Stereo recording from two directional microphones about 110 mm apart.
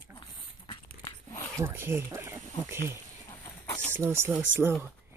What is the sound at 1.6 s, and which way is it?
Speech, 20° right (ahead or behind).